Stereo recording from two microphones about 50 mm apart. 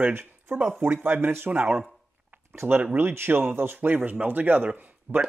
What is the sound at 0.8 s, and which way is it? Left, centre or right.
Speech, right.